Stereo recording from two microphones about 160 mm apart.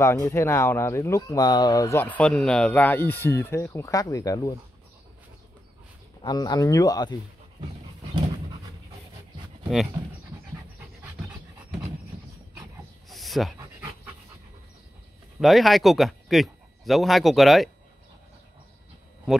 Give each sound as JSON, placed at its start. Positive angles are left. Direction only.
{"t": 0.0, "sound": "speech", "side_deg": 15}
{"t": 6.2, "sound": "speech", "side_deg": 25}
{"t": 10.8, "sound": "pant", "side_deg": -5}
{"t": 13.1, "sound": "a sound", "side_deg": 0}
{"t": 15.4, "sound": "speech", "side_deg": 0}